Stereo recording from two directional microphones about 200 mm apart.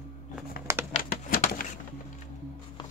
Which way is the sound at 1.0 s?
45° left (ahead or behind).